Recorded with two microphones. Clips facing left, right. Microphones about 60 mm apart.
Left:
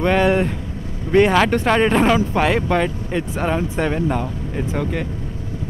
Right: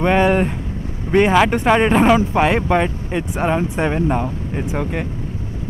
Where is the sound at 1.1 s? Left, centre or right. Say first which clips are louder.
Right 1 dB; centre.